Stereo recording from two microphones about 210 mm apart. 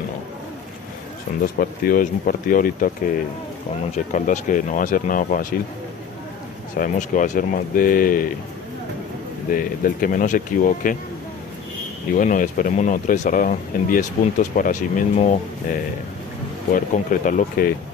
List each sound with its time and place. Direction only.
1.4 s speech: 45° left (ahead or behind)
6.8 s speech: 40° left (ahead or behind)
9.5 s speech: 40° left (ahead or behind)
12.2 s speech: 40° left (ahead or behind)